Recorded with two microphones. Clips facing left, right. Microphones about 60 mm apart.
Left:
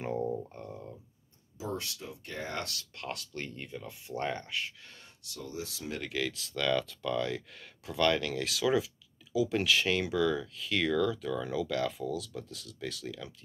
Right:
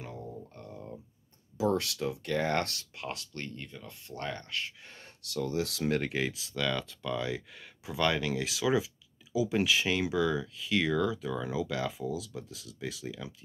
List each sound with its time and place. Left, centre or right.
0.0 s a sound: left
1.6 s speech: right
2.6 s speech: right
3.0 s speech: centre
3.3 s speech: centre
5.2 s speech: right
6.0 s speech: right
6.3 s speech: centre